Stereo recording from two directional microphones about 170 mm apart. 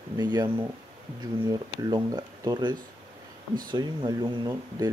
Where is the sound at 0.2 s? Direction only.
25° right (ahead or behind).